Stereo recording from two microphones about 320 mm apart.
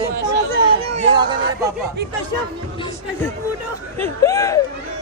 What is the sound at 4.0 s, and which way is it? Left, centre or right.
Speech, centre.